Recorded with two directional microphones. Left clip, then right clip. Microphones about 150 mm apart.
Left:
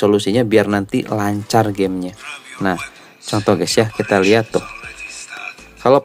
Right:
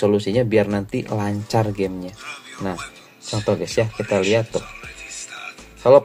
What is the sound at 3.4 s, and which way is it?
Speech, 55° left (ahead or behind).